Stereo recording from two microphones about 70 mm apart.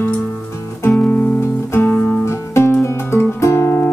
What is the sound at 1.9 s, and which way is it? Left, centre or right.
Music, left.